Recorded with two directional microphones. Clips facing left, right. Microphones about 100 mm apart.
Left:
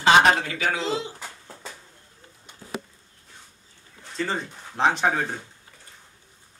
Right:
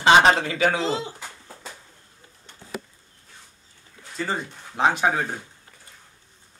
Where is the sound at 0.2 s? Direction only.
30° right (ahead or behind).